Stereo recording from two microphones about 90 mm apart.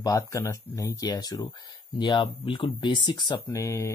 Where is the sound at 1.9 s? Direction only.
65° left (ahead or behind).